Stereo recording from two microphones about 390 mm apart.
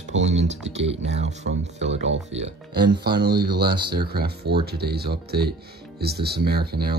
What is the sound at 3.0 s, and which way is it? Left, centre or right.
Speech, right.